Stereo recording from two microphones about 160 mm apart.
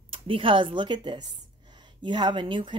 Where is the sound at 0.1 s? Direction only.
35° right (ahead or behind).